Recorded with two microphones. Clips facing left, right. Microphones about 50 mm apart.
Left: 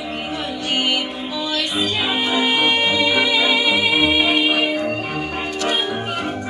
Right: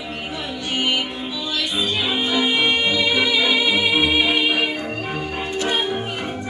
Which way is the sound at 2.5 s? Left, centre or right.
Left.